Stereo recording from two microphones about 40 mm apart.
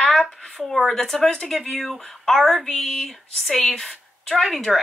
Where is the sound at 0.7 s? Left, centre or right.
Centre.